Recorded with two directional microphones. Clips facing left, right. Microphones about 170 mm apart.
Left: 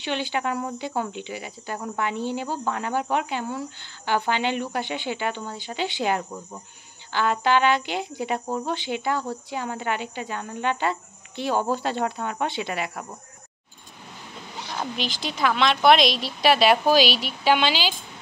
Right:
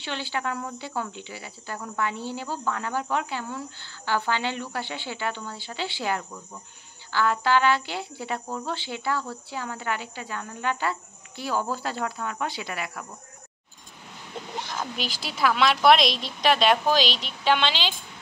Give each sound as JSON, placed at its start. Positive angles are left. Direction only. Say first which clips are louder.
{"t": 0.0, "sound": "speech", "louder": "left 4 dB", "side_deg": 15}
{"t": 15.0, "sound": "a woman's voice", "louder": "left 1 dB", "side_deg": 0}